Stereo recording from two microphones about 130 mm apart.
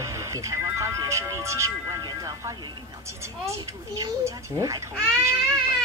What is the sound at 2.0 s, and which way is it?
Speech, 25° right (ahead or behind).